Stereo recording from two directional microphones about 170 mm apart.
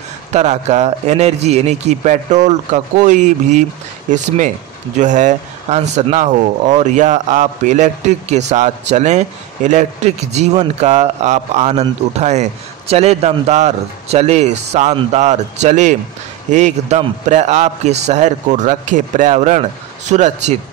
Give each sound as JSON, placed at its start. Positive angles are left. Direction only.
{"t": 0.3, "sound": "a man's voice", "side_deg": -40}